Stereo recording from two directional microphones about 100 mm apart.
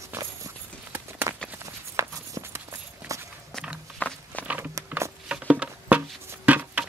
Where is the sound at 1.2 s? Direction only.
35° right (ahead or behind).